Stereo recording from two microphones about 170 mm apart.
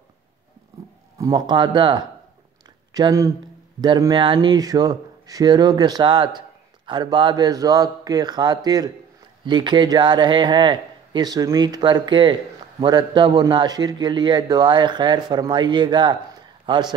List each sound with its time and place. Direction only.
1.1 s a man's voice: 20° right (ahead or behind)